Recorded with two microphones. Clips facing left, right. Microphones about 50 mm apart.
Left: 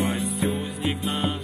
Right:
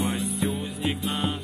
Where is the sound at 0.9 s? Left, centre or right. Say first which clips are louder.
Left 1 dB; left.